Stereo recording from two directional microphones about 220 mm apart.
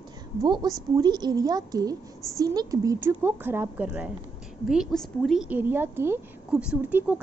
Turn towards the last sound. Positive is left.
turn(degrees=-5)  # may be behind; listen again after turning